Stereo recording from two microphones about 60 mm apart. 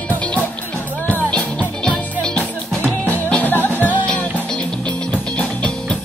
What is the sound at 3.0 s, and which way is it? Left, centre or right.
Music, left.